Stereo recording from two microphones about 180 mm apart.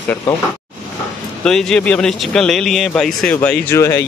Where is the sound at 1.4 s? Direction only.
5° left (ahead or behind).